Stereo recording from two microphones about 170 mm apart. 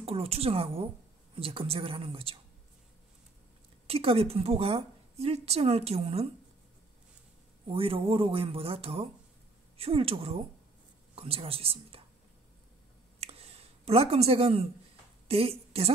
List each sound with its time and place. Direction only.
0.0 s a woman's voice: 35° right (ahead or behind)
3.8 s a woman's voice: 35° right (ahead or behind)
7.6 s a woman's voice: 35° right (ahead or behind)
13.2 s a sound: 35° right (ahead or behind)
15.2 s a woman's voice: 35° right (ahead or behind)